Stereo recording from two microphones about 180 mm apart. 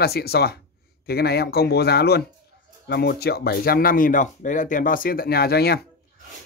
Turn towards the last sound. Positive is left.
turn(degrees=60)  # may be behind; listen again after turning